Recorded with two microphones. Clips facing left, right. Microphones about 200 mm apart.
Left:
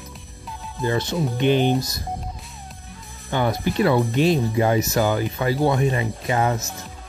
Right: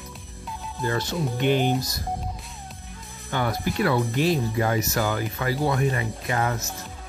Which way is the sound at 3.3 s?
20° left (ahead or behind).